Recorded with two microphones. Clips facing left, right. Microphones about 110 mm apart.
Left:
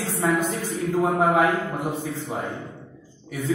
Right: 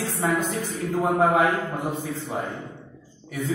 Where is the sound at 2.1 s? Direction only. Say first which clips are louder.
Even; 15° left (ahead or behind).